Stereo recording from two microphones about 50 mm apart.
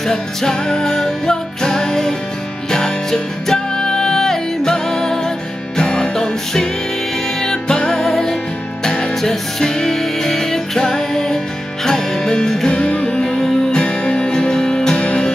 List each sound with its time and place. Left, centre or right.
0.0 s music: centre
12.7 s music: left